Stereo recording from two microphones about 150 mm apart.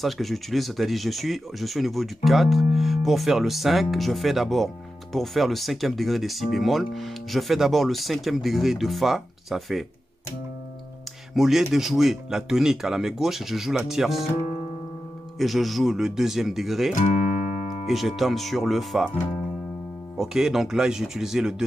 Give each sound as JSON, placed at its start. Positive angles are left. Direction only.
{"t": 0.0, "sound": "speech", "side_deg": 0}
{"t": 11.3, "sound": "speech", "side_deg": 0}
{"t": 15.3, "sound": "speech", "side_deg": 0}
{"t": 17.5, "sound": "music", "side_deg": 60}
{"t": 17.8, "sound": "speech", "side_deg": 0}